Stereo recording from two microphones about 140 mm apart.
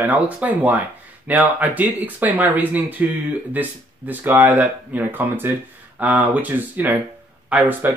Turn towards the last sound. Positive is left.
turn(degrees=-15)  # may be behind; listen again after turning